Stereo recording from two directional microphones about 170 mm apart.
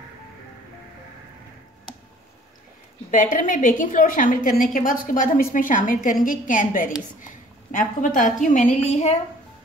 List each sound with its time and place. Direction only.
3.1 s a woman's voice: 50° left (ahead or behind)